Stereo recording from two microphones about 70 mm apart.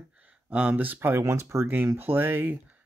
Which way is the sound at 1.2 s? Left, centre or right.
Right.